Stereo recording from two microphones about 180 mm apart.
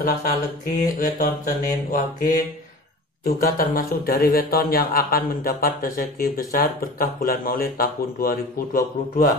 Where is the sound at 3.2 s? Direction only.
55° left (ahead or behind).